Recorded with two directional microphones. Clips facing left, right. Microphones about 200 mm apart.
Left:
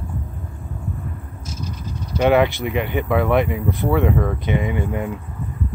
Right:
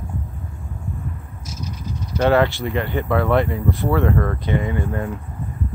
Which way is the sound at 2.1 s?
15° left (ahead or behind).